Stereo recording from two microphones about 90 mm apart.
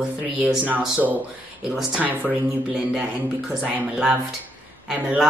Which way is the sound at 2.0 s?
20° right (ahead or behind).